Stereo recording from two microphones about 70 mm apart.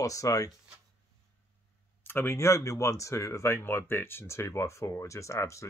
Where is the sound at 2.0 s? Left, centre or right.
Left.